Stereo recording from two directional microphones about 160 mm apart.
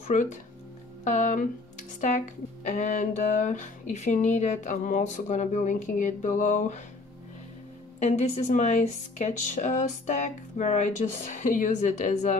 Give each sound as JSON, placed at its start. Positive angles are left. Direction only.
{"t": 0.1, "sound": "speech", "side_deg": 50}
{"t": 8.0, "sound": "speech", "side_deg": 45}